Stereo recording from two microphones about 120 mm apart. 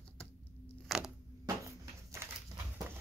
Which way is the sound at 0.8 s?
5° right (ahead or behind).